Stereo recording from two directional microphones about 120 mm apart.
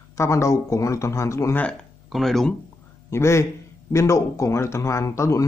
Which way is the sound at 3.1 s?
25° left (ahead or behind).